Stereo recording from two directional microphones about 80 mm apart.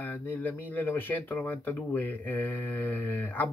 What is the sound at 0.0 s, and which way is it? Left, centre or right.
Speech, left.